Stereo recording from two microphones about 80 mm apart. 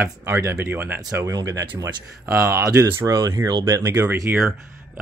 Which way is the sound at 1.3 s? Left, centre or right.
Right.